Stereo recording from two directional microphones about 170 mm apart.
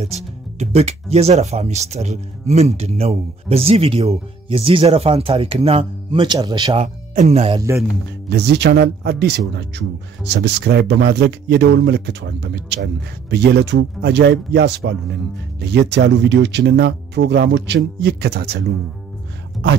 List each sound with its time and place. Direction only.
0.0 s speech: 40° right (ahead or behind)
6.8 s speech: 40° right (ahead or behind)
8.3 s speech: 80° right
9.6 s speech: 90° right; by 18.6 s 70° right (ahead or behind)